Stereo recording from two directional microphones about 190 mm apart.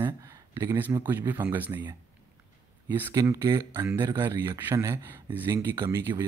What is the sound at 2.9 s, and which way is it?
Speech, 15° right (ahead or behind).